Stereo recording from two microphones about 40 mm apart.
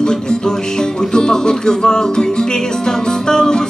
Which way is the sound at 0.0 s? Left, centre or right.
Centre.